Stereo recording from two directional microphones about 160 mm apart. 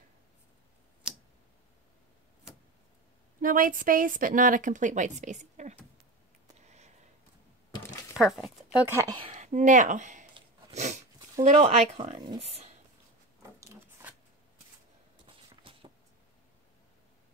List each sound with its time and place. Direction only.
1.0 s tick: 5° right (ahead or behind)
3.3 s a woman's voice: 60° right (ahead or behind)
7.7 s a sound: 20° left (ahead or behind)
8.2 s speech: centre (ahead or behind)
8.8 s speech: 20° right (ahead or behind)
9.2 s speech: 45° right (ahead or behind)
10.7 s dog: 45° right (ahead or behind)
11.5 s speech: 35° right (ahead or behind)
13.6 s a sound: 20° right (ahead or behind)
15.2 s walk: 35° right (ahead or behind)